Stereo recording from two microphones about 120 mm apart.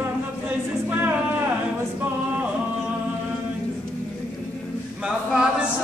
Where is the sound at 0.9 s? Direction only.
15° right (ahead or behind).